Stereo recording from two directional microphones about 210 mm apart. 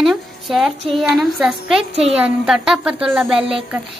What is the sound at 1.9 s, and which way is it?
Speech, 30° right (ahead or behind).